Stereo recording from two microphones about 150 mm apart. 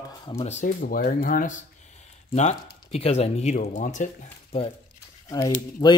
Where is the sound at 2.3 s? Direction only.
50° left (ahead or behind).